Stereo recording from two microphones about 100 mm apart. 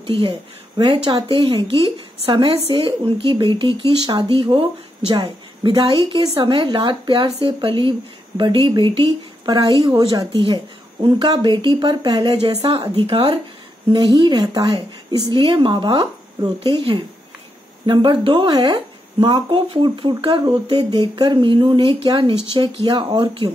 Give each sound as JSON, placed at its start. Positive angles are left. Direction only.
{"t": 0.0, "sound": "speech", "side_deg": -60}
{"t": 0.7, "sound": "a woman's voice", "side_deg": -50}
{"t": 4.0, "sound": "speech", "side_deg": -45}
{"t": 4.3, "sound": "a woman's voice", "side_deg": -60}
{"t": 13.9, "sound": "speech", "side_deg": -50}
{"t": 16.7, "sound": "a woman's voice", "side_deg": -60}